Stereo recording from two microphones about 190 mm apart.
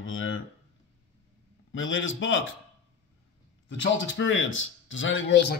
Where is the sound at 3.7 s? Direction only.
80° left.